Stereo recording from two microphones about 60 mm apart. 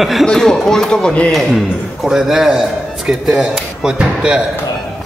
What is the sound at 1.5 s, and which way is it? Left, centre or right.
A man's voice, centre.